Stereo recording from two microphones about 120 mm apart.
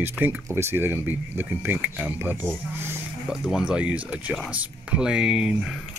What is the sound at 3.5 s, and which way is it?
Speech, 5° right (ahead or behind).